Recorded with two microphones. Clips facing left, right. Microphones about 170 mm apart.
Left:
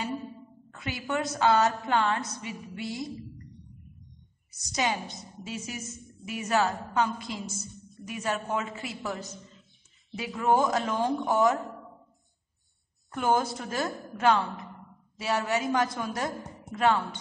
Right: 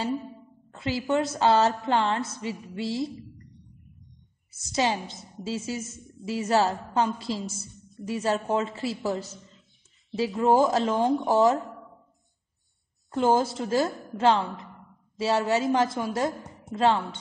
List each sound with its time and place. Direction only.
0.7 s a woman's voice: 25° right (ahead or behind)
4.6 s a woman's voice: 25° right (ahead or behind)
13.1 s a woman's voice: 25° right (ahead or behind)